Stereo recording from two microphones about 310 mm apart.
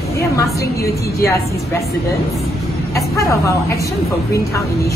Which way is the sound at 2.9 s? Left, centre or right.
Centre.